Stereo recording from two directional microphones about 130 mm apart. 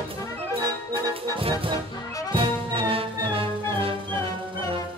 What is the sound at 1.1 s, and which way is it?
Music, 45° right (ahead or behind).